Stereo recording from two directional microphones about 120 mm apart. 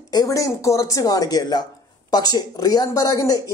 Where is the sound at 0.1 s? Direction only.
30° left (ahead or behind).